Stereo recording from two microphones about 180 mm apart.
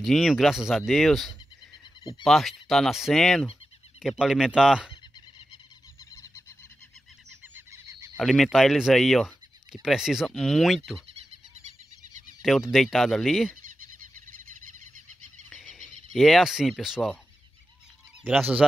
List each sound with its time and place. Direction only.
0.0 s speech: centre (ahead or behind)
6.1 s a sound: 15° left (ahead or behind)
7.5 s frog: 15° right (ahead or behind)
8.2 s speech: centre (ahead or behind)
12.4 s speech: centre (ahead or behind)
16.2 s speech: centre (ahead or behind)
18.2 s speech: 10° right (ahead or behind)